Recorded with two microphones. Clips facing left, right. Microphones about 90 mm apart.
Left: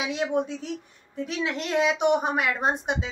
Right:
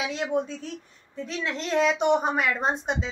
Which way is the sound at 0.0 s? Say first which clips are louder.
Left 1 dB; 15° left (ahead or behind).